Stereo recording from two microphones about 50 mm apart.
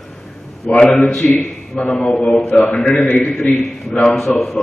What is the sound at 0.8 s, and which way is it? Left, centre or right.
A man's voice, centre.